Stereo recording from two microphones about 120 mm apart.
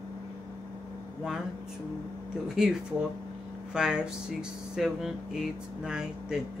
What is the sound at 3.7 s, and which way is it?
Speech, 5° right (ahead or behind).